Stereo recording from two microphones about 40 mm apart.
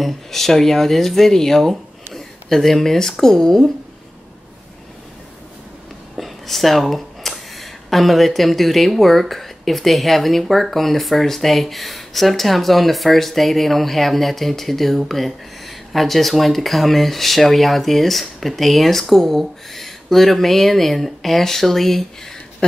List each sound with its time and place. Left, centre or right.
0.0 s speech: centre
6.1 s speech: centre
22.6 s speech: left